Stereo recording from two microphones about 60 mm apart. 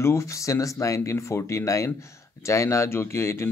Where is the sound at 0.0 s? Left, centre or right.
Left.